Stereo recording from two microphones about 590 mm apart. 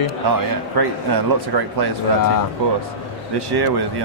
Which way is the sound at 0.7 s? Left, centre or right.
Right.